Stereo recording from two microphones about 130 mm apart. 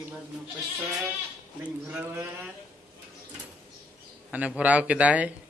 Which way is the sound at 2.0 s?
20° right (ahead or behind).